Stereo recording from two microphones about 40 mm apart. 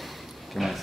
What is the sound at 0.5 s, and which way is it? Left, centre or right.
Speech, centre.